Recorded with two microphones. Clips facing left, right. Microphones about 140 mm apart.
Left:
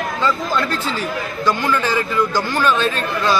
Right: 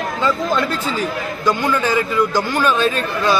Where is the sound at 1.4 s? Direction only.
15° right (ahead or behind).